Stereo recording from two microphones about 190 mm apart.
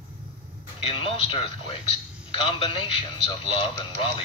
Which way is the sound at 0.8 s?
30° left (ahead or behind).